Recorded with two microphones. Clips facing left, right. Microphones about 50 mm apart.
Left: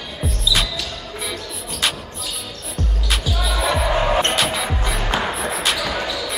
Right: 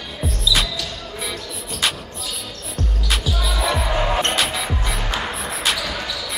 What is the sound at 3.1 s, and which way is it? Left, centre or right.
Music, centre.